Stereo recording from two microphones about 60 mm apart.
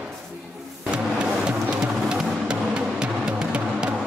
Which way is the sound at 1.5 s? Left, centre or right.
Centre.